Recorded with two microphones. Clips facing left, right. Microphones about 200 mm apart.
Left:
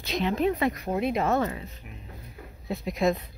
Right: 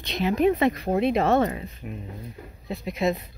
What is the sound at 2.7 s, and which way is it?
Speech, centre (ahead or behind).